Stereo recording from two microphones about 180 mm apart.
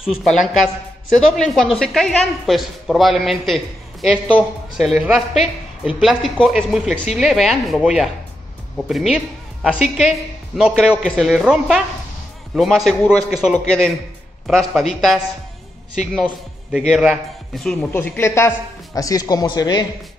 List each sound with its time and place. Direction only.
0.0 s a woman's voice: centre (ahead or behind)
17.7 s a woman's voice: 10° left (ahead or behind)